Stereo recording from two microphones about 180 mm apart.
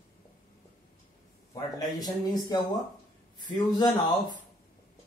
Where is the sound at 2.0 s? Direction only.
20° left (ahead or behind).